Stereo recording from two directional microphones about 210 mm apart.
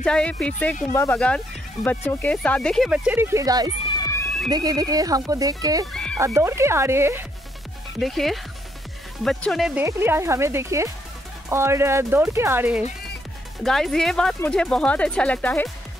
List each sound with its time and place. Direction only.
0.0 s speech: 5° left (ahead or behind); by 3.7 s 20° right (ahead or behind)
3.8 s music: 20° left (ahead or behind)
4.5 s speech: 20° right (ahead or behind)
5.9 s music: 5° left (ahead or behind)
6.1 s speech: 15° right (ahead or behind)
8.0 s speech: centre (ahead or behind)
13.7 s speech: centre (ahead or behind)